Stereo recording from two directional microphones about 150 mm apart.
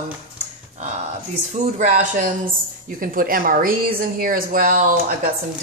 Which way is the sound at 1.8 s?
55° right (ahead or behind).